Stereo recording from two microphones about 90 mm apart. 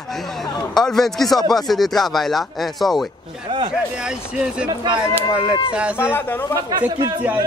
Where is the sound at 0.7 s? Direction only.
5° left (ahead or behind).